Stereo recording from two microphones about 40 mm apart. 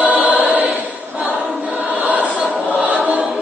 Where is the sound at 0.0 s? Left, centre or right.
Right.